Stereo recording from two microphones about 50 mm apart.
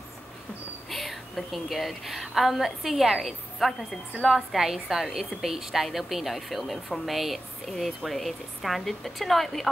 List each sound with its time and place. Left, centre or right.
0.8 s a woman's voice: centre